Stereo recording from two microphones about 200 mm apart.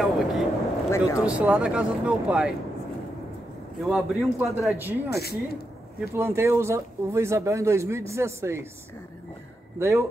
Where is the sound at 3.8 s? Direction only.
Centre (ahead or behind).